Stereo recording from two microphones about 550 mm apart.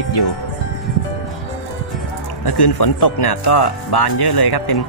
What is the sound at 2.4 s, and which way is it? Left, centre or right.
Speech, left.